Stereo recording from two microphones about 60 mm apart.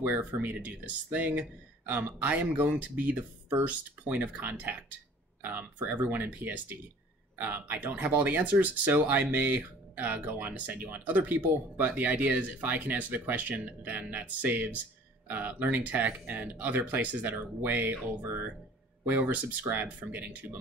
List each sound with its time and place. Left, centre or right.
0.0 s speech: right
19.0 s speech: right